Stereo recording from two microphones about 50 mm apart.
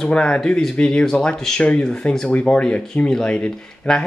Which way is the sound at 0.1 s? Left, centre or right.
Centre.